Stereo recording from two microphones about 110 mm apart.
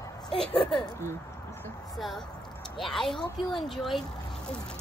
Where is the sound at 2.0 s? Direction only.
Centre (ahead or behind).